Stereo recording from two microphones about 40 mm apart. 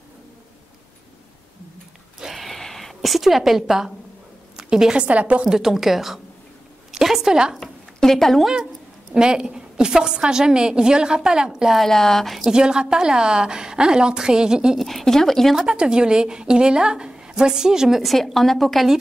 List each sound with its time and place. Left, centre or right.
2.1 s a sound: centre
2.4 s a sound: centre
4.9 s a woman's voice: right
5.5 s a woman's voice: centre
7.0 s a sound: centre
7.6 s a sound: centre
9.1 s a woman's voice: centre
11.7 s speech: centre
12.4 s a woman's voice: right
14.8 s a woman's voice: centre
15.6 s a woman's voice: right
18.0 s a woman's voice: centre